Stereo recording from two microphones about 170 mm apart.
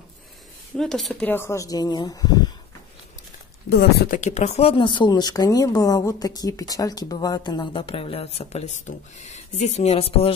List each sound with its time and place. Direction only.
0.7 s speech: centre (ahead or behind)
1.3 s speech: 15° left (ahead or behind)
3.7 s speech: 70° left (ahead or behind)
4.2 s speech: 45° left (ahead or behind)